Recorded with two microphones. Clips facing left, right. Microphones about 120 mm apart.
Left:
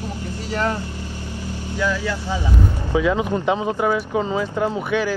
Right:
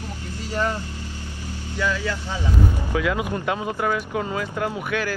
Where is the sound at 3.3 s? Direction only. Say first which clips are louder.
Left 5 dB; 20° left (ahead or behind).